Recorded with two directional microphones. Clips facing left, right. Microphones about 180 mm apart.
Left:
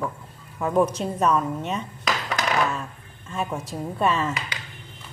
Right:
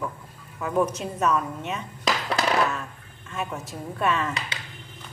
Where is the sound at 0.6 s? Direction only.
30° left (ahead or behind).